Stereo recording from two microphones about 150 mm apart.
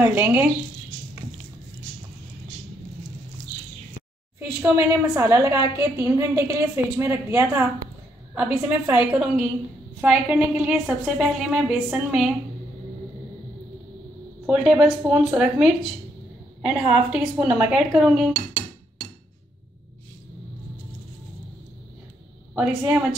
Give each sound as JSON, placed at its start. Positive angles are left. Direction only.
{"t": 0.0, "sound": "a woman's voice", "side_deg": -10}
{"t": 4.4, "sound": "a woman's voice", "side_deg": -15}
{"t": 14.4, "sound": "a woman's voice", "side_deg": -5}
{"t": 22.6, "sound": "a woman's voice", "side_deg": -10}